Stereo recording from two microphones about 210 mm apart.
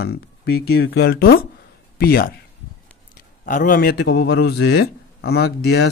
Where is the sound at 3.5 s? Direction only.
40° left (ahead or behind).